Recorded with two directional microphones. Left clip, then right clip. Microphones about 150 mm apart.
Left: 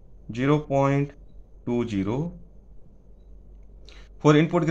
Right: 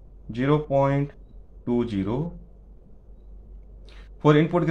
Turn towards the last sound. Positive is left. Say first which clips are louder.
# even
turn(degrees=15)  # may be behind; listen again after turning